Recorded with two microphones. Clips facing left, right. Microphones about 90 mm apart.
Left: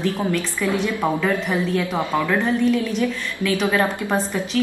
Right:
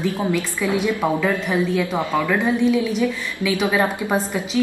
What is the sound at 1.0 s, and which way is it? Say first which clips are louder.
A woman's voice: right 1 dB; centre (ahead or behind).